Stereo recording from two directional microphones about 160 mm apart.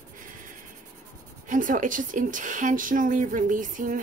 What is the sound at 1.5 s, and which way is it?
Speech, 55° right (ahead or behind).